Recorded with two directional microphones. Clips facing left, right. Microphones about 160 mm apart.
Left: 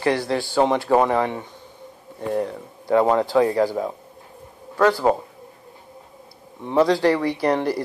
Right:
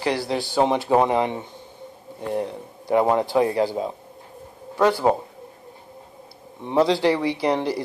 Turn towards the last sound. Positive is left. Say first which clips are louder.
# left 1 dB
turn(degrees=-15)  # may be behind; listen again after turning